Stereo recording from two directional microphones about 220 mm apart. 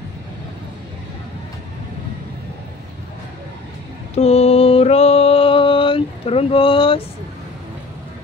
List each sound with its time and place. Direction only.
4.1 s mantra: 30° left (ahead or behind)